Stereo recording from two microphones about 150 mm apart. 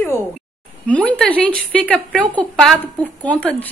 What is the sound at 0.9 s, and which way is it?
A woman's voice, 10° left (ahead or behind).